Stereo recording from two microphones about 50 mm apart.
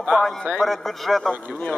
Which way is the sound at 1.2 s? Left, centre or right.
Left.